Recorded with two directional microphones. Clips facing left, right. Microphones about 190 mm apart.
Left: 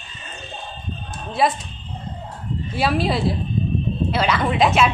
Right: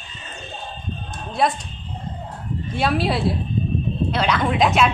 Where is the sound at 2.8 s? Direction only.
Centre (ahead or behind).